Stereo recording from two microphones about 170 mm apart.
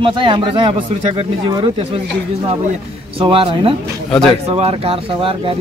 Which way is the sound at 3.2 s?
30° right (ahead or behind).